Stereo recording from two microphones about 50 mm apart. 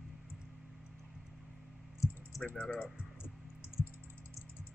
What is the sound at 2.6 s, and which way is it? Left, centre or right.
Speech, left.